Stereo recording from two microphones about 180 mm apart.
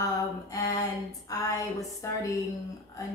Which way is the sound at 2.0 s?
20° left (ahead or behind).